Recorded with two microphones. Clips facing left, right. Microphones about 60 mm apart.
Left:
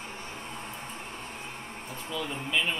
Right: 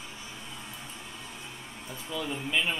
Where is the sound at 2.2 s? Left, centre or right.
Centre.